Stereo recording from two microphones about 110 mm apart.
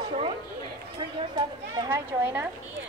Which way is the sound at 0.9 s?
45° right (ahead or behind).